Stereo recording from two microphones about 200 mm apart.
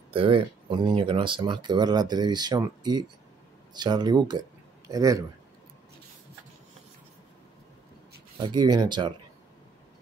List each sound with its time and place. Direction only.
0.1 s speech: 25° right (ahead or behind)
8.4 s speech: 20° right (ahead or behind)